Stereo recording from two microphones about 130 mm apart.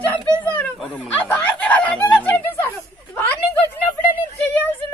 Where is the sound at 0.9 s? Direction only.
15° left (ahead or behind).